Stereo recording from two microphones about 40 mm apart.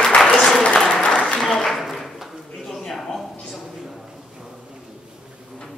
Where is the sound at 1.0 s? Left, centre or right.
Left.